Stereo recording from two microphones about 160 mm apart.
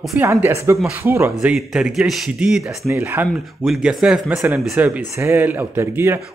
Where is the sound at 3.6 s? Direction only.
Centre (ahead or behind).